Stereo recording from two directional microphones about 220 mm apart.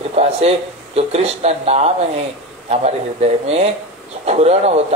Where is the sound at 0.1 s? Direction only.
30° right (ahead or behind).